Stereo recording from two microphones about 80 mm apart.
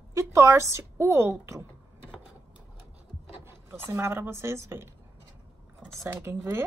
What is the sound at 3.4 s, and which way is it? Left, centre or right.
Speech, right.